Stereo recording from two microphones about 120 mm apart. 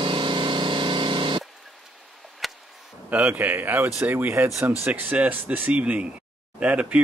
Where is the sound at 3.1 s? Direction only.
15° right (ahead or behind).